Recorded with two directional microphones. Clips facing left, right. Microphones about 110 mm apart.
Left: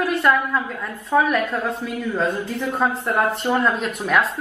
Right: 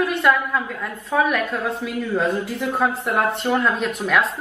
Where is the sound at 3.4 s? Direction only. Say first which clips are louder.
Even; 20° left (ahead or behind).